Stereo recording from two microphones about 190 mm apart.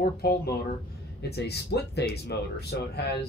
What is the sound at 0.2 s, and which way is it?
Speech, 55° left (ahead or behind).